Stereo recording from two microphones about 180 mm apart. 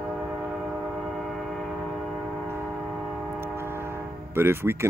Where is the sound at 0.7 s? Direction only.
Centre (ahead or behind).